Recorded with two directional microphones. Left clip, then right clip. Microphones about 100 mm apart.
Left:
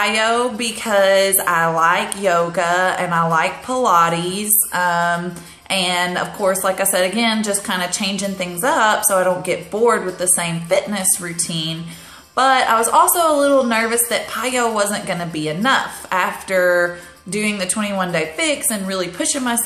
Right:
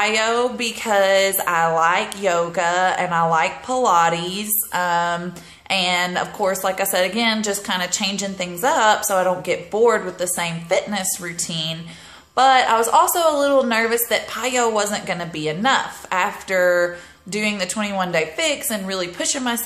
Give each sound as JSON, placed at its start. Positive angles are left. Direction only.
{"t": 0.0, "sound": "a woman's voice", "side_deg": -15}